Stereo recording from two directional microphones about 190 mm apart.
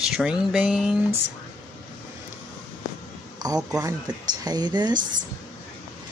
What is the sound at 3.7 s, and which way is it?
Speech, 20° right (ahead or behind).